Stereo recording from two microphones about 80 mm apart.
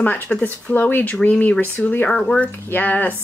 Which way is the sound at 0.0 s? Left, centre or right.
Left.